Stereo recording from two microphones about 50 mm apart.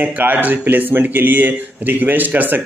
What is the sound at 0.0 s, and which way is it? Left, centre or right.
Speech, right.